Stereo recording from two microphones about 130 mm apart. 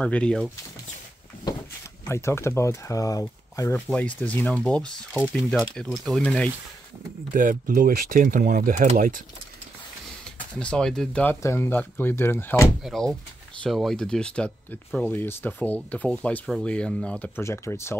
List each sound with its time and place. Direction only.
0.0 s speech: 10° left (ahead or behind)
2.0 s speech: 20° left (ahead or behind)
7.3 s speech: 90° right
10.5 s speech: 5° left (ahead or behind)
11.2 s speech: 20° left (ahead or behind)
12.8 s speech: centre (ahead or behind)
17.4 s speech: 20° left (ahead or behind)